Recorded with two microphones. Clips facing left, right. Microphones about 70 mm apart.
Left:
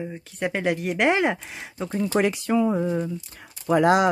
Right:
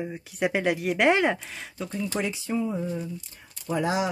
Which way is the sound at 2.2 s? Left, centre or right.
Left.